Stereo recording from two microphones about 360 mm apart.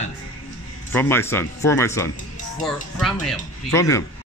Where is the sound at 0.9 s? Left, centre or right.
Centre.